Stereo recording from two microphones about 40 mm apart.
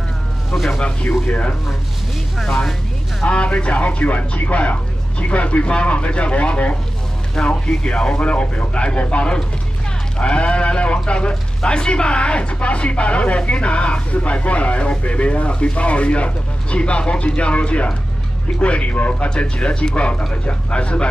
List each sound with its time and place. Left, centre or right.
0.7 s speech: left
2.4 s speech: centre
3.3 s speech: left
7.4 s speech: centre; by 19.2 s left
19.2 s speech: left